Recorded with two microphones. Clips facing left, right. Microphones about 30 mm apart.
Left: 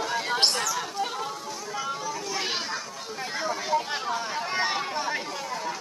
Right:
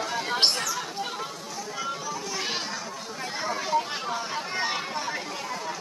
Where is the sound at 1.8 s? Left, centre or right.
Centre.